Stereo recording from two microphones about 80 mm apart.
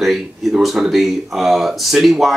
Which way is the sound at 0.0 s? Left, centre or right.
Centre.